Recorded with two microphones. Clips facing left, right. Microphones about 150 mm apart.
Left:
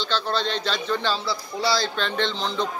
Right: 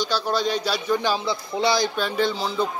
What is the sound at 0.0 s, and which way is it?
Speech, 10° right (ahead or behind).